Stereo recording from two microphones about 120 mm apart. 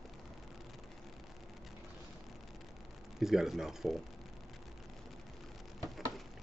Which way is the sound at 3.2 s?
5° right (ahead or behind).